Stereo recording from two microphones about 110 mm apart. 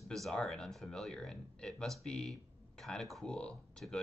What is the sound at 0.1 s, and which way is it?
Speech, 5° left (ahead or behind).